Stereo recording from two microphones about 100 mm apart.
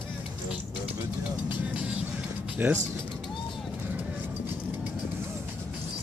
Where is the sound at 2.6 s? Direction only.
20° right (ahead or behind).